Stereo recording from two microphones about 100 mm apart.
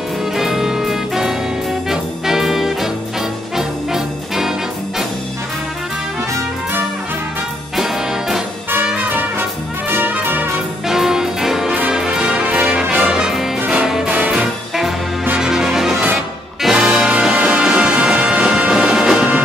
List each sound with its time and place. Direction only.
0.4 s music: 5° right (ahead or behind)
7.7 s music: 5° right (ahead or behind)
8.8 s brass instrument: 15° right (ahead or behind)
10.9 s music: 5° right (ahead or behind)